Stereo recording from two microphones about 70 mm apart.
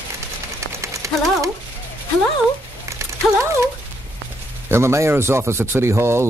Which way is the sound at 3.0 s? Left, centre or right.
Right.